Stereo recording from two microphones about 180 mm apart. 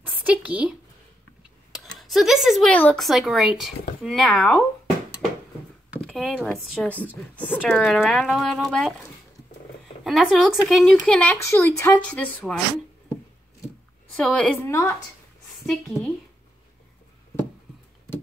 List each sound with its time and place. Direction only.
0.0 s speech: 10° right (ahead or behind)
5.9 s speech: centre (ahead or behind)
10.0 s speech: centre (ahead or behind)
14.1 s a woman's voice: 5° left (ahead or behind)
15.6 s speech: centre (ahead or behind)
18.1 s a sound: 10° left (ahead or behind)